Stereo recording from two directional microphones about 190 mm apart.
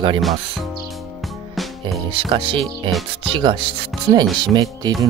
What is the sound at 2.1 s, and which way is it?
Speech, 25° right (ahead or behind).